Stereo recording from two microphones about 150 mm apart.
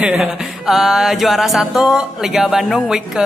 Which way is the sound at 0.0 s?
5° right (ahead or behind).